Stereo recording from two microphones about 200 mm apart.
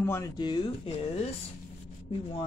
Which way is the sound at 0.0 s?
15° left (ahead or behind).